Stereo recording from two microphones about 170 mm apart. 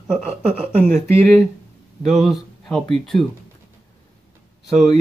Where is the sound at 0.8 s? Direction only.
10° left (ahead or behind).